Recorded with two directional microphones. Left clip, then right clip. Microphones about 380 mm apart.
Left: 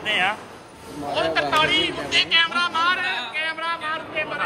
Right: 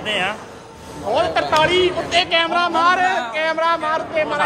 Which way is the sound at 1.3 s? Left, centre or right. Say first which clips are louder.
Right 2 dB; centre.